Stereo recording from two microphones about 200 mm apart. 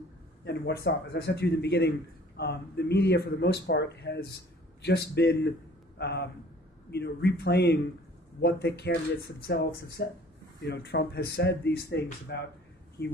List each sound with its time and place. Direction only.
0.5 s a man's voice: 55° left (ahead or behind)